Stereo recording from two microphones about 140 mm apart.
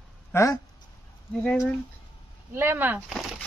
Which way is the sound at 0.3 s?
20° left (ahead or behind).